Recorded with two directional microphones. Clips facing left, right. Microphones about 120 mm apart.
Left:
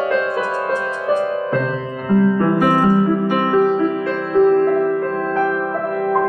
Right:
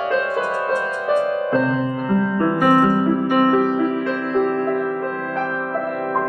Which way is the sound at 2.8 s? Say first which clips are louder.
Left 2 dB; 20° left (ahead or behind).